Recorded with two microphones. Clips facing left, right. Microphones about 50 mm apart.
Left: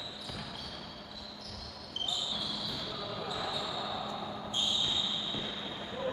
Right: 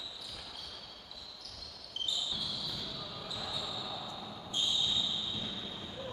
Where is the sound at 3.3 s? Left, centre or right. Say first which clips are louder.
Left 2 dB; left.